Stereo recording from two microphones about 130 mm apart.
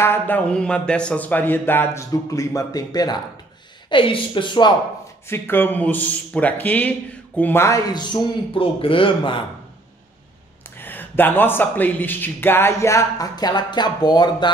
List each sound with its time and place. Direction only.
0.0 s a man's voice: 15° left (ahead or behind)
3.9 s a man's voice: 40° left (ahead or behind)
5.2 s a man's voice: 15° left (ahead or behind)
7.9 s a man's voice: 35° left (ahead or behind)
10.8 s a man's voice: 15° left (ahead or behind); by 14.5 s 35° left (ahead or behind)